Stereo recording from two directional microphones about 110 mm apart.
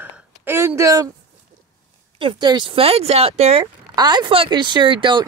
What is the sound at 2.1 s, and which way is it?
Speech, 45° right (ahead or behind).